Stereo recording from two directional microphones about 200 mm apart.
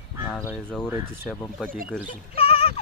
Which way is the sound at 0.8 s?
10° right (ahead or behind).